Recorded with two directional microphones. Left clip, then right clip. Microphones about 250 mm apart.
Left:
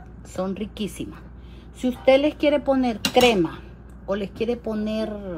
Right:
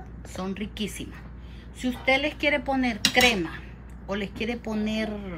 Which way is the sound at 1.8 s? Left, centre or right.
Centre.